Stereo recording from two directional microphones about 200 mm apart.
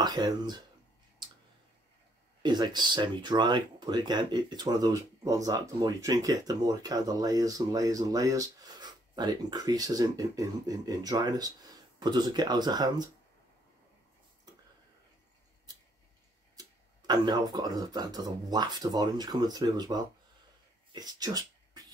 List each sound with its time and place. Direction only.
0.0 s speech: 20° right (ahead or behind)
2.4 s speech: 20° right (ahead or behind)
16.5 s speech: 20° right (ahead or behind)
20.9 s beatboxing: 20° right (ahead or behind)